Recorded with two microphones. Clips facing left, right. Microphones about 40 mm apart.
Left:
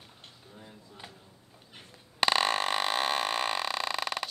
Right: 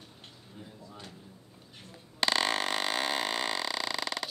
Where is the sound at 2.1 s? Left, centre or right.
Centre.